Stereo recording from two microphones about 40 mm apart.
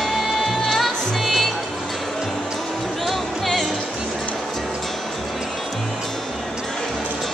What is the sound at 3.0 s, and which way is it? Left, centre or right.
Music, centre.